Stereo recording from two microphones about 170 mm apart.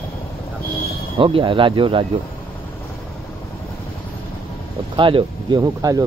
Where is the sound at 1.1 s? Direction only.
30° right (ahead or behind).